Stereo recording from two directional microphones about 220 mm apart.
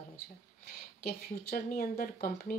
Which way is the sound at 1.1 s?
40° left (ahead or behind).